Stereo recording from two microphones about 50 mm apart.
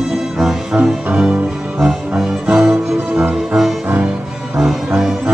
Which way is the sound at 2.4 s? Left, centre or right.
Centre.